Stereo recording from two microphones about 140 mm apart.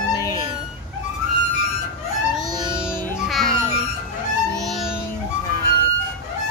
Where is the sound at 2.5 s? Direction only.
30° right (ahead or behind).